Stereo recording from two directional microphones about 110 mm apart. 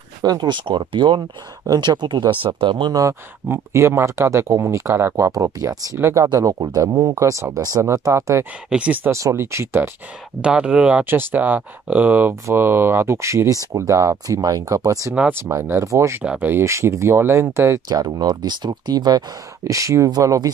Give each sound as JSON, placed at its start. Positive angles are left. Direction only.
{"t": 0.2, "sound": "speech", "side_deg": -40}
{"t": 2.9, "sound": "speech", "side_deg": -30}
{"t": 5.9, "sound": "speech", "side_deg": -20}
{"t": 6.3, "sound": "speech", "side_deg": -30}
{"t": 8.6, "sound": "speech", "side_deg": -10}
{"t": 9.1, "sound": "speech", "side_deg": -25}
{"t": 10.4, "sound": "speech", "side_deg": -10}
{"t": 15.1, "sound": "speech", "side_deg": -20}